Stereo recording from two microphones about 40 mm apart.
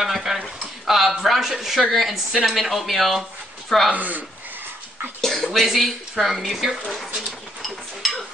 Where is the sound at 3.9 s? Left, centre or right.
Right.